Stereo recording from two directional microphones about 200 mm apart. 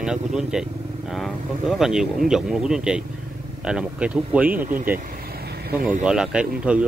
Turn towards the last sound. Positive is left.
turn(degrees=-5)  # may be behind; listen again after turning